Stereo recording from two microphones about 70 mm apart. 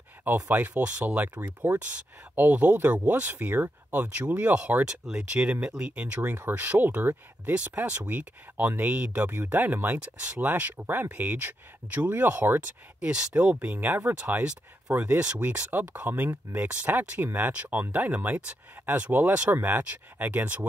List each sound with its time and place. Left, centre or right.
0.2 s speech: right
6.2 s speech: right
9.3 s speech: right